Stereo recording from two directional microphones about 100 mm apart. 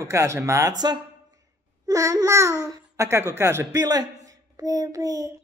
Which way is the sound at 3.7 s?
40° right (ahead or behind).